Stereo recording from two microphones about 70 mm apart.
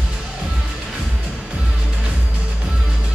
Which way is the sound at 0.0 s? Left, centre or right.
Centre.